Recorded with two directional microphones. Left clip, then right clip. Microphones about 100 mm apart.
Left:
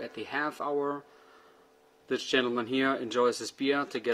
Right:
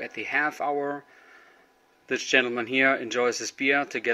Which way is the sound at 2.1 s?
20° left (ahead or behind).